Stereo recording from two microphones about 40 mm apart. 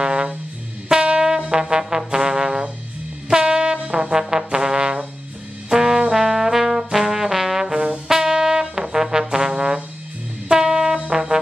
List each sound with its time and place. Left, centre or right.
0.0 s music: right
0.8 s brass instrument: right
1.5 s trombone: centre
3.3 s brass instrument: centre
5.7 s music: centre
6.1 s trombone: centre
7.7 s trombone: right
8.1 s trombone: centre
10.5 s music: centre